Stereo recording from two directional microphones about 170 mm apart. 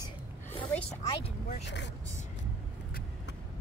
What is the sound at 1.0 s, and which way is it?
Speech, 25° left (ahead or behind).